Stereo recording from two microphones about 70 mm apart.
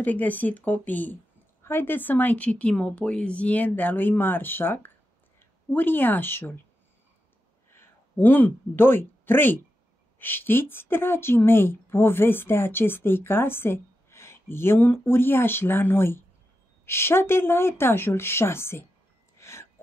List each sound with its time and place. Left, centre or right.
0.0 s speech: left
7.7 s speech: left
19.3 s music: left